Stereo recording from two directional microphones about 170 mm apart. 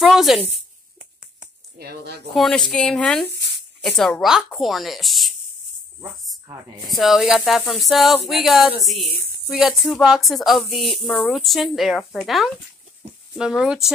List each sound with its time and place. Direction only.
0.0 s a sound: centre (ahead or behind)
1.8 s speech: 70° right (ahead or behind)
2.3 s speech: centre (ahead or behind)
3.3 s a sound: 90° right
3.8 s speech: centre (ahead or behind)
6.9 s speech: centre (ahead or behind)